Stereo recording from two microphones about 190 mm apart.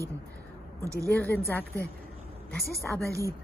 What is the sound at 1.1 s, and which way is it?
Speech, 10° left (ahead or behind).